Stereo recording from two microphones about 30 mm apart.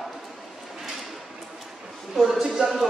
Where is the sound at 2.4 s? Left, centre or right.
Centre.